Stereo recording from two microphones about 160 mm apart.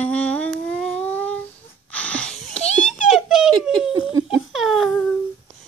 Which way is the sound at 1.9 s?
10° left (ahead or behind).